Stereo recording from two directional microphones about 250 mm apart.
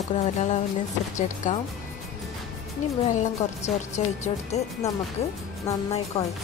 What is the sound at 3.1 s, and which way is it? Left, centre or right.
A woman's voice, left.